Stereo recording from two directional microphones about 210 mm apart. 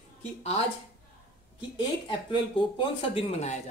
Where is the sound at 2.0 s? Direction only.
25° left (ahead or behind).